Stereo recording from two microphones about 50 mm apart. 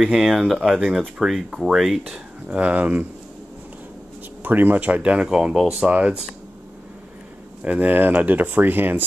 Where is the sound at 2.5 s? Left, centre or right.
Right.